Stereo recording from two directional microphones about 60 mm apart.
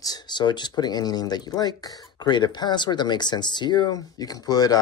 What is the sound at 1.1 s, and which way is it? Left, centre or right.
Speech, left.